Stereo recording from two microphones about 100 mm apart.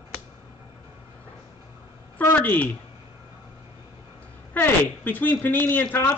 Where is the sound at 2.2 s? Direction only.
20° left (ahead or behind).